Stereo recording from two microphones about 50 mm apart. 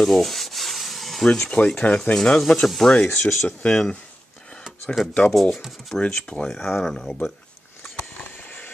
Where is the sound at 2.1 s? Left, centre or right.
Centre.